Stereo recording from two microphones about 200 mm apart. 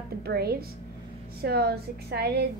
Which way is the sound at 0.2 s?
50° right (ahead or behind).